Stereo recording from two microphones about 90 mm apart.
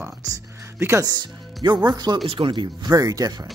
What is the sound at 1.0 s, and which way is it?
Speech, 55° right (ahead or behind).